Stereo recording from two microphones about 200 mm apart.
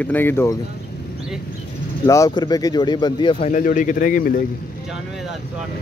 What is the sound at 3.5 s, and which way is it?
Speech, 40° left (ahead or behind).